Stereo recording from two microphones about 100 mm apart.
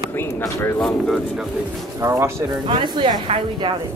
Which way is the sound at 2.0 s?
30° right (ahead or behind).